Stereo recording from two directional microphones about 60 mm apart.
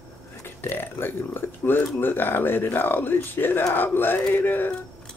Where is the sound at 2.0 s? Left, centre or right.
Left.